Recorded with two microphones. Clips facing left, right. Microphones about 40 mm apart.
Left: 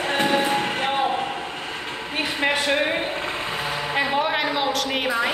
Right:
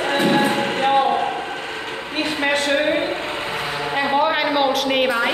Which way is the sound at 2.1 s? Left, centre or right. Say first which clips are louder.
Right 2 dB; centre.